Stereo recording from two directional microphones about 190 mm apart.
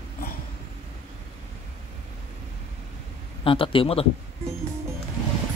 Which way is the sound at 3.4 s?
30° left (ahead or behind).